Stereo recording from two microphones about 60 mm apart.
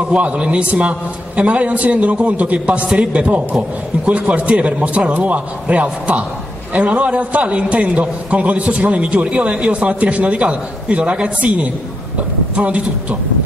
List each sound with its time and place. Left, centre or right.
0.1 s a man's voice: right